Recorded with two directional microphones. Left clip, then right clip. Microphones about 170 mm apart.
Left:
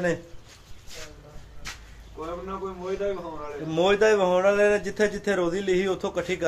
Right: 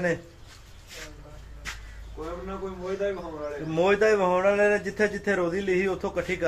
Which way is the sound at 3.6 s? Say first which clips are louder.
Left 1 dB; 10° left (ahead or behind).